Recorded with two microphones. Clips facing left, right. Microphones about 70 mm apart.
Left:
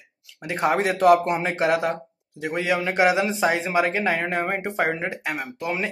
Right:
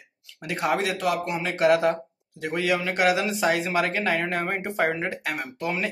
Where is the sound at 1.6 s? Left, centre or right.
Centre.